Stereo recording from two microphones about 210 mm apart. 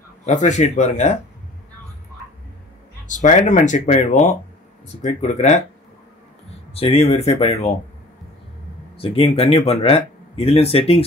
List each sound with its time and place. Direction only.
0.2 s speech: 35° left (ahead or behind)
3.1 s speech: 35° left (ahead or behind)
6.7 s speech: 30° left (ahead or behind)
8.9 s speech: 25° left (ahead or behind)